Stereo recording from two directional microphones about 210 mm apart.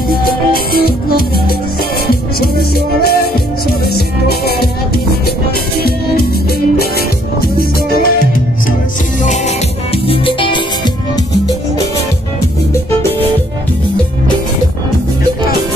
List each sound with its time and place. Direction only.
0.2 s music: 45° left (ahead or behind)
3.0 s music: 45° left (ahead or behind)
7.5 s music: 45° left (ahead or behind)
10.0 s music: 25° left (ahead or behind)